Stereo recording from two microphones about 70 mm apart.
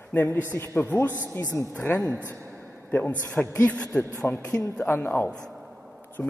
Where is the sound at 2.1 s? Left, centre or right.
Right.